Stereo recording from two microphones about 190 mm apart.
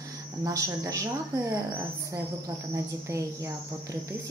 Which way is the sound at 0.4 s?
20° right (ahead or behind).